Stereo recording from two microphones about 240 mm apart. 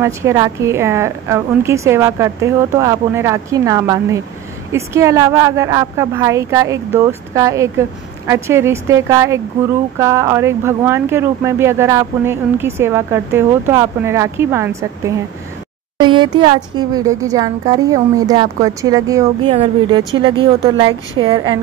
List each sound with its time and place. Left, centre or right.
0.0 s speech: centre